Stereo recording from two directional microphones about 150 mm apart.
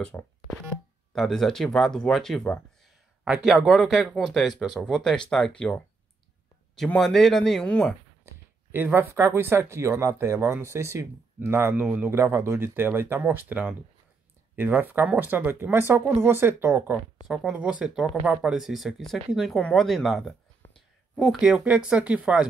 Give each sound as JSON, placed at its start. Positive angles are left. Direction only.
{"t": 0.1, "sound": "speech", "side_deg": 10}
{"t": 6.7, "sound": "speech", "side_deg": 5}
{"t": 8.7, "sound": "speech", "side_deg": -15}